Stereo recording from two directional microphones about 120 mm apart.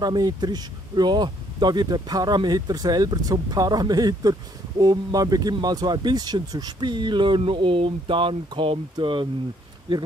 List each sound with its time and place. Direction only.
0.0 s speech: 35° right (ahead or behind)